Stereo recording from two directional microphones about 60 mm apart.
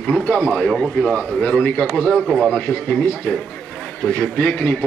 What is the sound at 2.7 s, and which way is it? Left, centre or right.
A man's voice, left.